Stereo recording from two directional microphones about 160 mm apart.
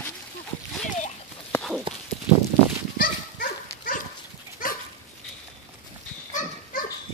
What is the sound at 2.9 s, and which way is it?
Dog, 60° left (ahead or behind).